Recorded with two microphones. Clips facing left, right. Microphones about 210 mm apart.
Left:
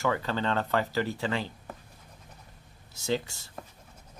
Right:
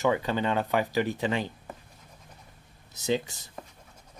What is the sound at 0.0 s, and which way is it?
Speech, 15° right (ahead or behind).